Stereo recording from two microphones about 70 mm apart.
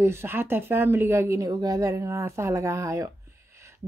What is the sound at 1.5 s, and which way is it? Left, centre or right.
A woman's voice, right.